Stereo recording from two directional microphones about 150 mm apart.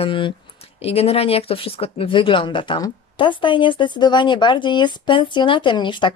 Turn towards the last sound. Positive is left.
turn(degrees=30)  # may be behind; listen again after turning